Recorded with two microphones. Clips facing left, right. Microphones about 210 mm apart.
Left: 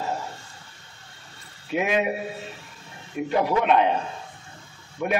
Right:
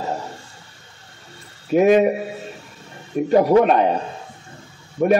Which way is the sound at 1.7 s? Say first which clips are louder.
Right 10 dB; 40° right (ahead or behind).